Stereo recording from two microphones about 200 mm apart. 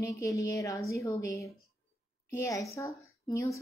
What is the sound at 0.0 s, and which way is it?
A woman's voice, 15° left (ahead or behind).